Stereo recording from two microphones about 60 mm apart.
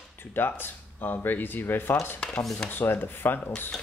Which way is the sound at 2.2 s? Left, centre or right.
Centre.